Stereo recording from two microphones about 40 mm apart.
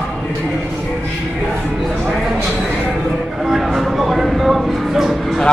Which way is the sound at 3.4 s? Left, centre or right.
Centre.